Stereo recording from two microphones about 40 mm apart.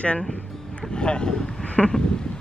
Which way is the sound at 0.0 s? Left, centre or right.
Left.